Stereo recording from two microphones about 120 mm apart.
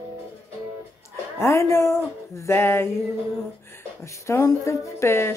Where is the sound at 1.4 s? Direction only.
25° left (ahead or behind).